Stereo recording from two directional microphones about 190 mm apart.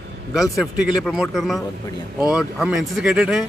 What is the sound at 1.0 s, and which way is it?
Speech, 5° left (ahead or behind).